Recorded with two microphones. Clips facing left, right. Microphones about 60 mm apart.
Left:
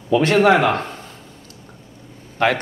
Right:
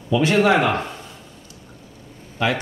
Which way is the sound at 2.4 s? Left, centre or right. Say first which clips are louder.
Left 4 dB; left.